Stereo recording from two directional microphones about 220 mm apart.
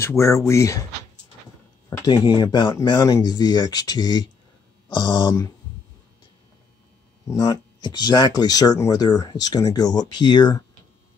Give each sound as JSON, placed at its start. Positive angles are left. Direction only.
{"t": 0.0, "sound": "speech", "side_deg": 15}
{"t": 1.9, "sound": "speech", "side_deg": 20}
{"t": 7.2, "sound": "speech", "side_deg": 15}